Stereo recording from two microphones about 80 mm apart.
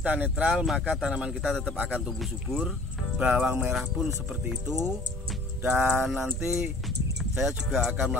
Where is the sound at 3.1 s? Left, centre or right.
Centre.